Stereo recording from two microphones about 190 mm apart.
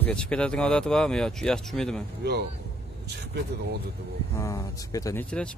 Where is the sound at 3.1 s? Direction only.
60° right (ahead or behind).